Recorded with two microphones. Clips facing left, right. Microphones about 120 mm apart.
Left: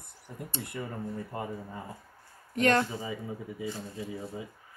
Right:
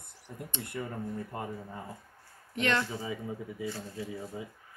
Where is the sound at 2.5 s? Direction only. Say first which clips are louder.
Left 5 dB; 45° left (ahead or behind).